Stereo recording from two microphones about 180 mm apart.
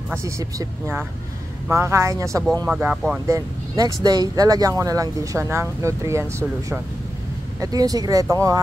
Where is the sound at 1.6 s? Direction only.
15° right (ahead or behind).